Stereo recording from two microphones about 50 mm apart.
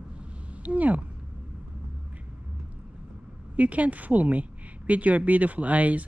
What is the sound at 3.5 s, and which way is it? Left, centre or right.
A woman's voice, right.